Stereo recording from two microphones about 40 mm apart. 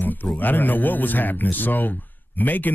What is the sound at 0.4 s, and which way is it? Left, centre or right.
Speech, left.